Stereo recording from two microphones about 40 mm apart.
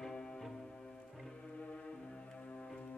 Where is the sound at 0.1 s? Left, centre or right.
Centre.